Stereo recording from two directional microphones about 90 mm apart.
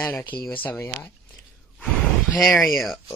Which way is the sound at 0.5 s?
20° left (ahead or behind).